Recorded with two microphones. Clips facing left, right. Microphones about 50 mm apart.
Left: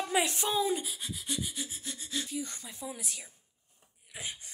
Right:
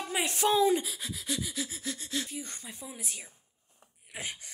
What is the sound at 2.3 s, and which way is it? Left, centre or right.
Gasp, right.